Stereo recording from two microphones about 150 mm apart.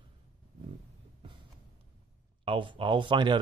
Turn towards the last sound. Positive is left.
turn(degrees=-35)  # may be behind; listen again after turning